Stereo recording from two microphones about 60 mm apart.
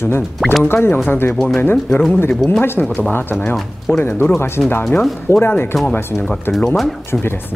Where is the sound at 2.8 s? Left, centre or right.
Centre.